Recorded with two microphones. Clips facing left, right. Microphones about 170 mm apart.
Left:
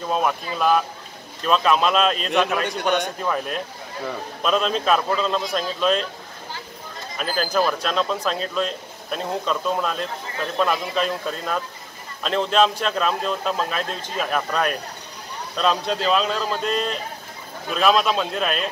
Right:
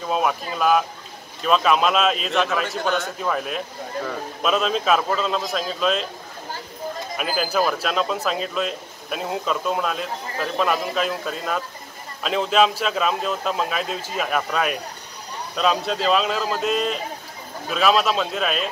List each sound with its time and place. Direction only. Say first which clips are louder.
0.1 s speech: even; 5° right (ahead or behind)
2.8 s a man's voice: left 3 dB; 20° left (ahead or behind)
3.2 s speech: even; centre (ahead or behind)
7.2 s speech: left 1 dB; 10° right (ahead or behind)